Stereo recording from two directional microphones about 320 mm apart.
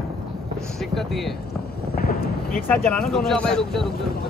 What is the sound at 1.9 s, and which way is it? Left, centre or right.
Eruption, left.